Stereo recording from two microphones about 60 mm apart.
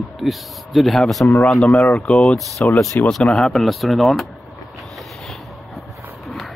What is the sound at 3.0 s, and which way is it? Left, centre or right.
Speech, left.